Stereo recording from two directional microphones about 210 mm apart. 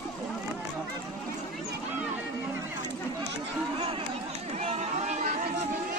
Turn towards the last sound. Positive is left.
turn(degrees=-35)  # may be behind; listen again after turning